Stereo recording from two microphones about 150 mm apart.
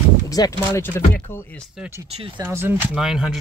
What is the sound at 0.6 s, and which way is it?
Speech, 15° left (ahead or behind).